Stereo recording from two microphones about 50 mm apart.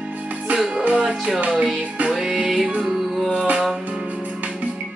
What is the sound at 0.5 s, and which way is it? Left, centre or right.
Music, centre.